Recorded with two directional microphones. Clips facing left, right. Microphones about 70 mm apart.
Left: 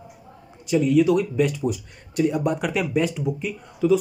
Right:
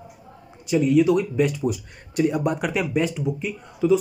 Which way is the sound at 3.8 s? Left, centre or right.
Centre.